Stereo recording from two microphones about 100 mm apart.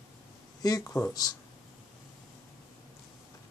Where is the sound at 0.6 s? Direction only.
40° left (ahead or behind).